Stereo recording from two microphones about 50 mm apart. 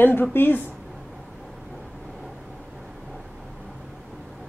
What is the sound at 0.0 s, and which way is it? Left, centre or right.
Speech, left.